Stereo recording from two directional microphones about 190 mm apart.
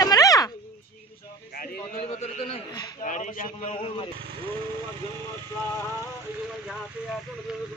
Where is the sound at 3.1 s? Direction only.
40° left (ahead or behind).